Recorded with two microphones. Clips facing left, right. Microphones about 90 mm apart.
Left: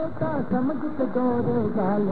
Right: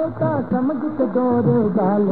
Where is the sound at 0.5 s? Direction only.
5° right (ahead or behind).